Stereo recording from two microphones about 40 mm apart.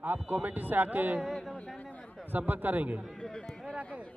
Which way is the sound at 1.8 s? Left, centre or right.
Left.